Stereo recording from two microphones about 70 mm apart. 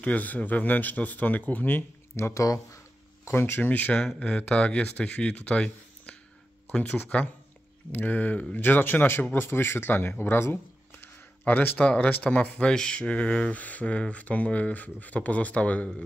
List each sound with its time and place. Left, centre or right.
0.0 s speech: left
2.1 s speech: left
2.4 s speech: left
3.3 s speech: left; by 7.0 s centre
7.9 s speech: left